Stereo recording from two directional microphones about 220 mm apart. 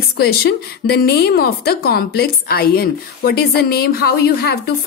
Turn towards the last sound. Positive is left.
turn(degrees=45)  # may be behind; listen again after turning